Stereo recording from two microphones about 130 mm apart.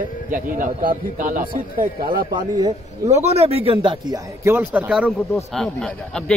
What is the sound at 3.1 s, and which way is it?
Speech, 55° right (ahead or behind).